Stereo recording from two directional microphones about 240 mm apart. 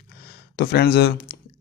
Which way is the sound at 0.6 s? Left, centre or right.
Left.